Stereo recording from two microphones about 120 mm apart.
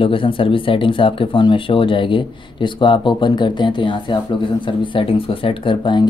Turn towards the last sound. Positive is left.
turn(degrees=40)  # may be behind; listen again after turning